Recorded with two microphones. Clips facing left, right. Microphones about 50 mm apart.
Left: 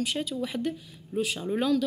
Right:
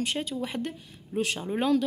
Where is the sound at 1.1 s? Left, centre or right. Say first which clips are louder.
Even; centre.